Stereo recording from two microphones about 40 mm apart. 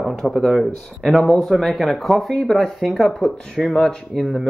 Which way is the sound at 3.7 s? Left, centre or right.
Centre.